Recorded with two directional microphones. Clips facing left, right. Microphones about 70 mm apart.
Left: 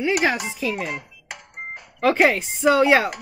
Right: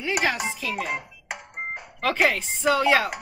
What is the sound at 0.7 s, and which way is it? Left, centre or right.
Music, centre.